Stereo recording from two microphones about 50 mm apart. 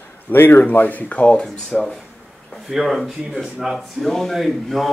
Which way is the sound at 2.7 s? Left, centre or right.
Centre.